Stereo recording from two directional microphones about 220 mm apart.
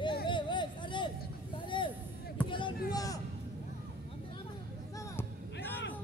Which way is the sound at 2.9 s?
15° left (ahead or behind).